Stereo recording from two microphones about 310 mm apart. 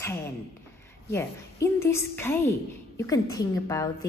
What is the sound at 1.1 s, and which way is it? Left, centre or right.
A woman's voice, centre.